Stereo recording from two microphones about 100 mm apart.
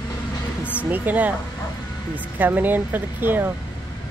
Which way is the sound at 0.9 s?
15° right (ahead or behind).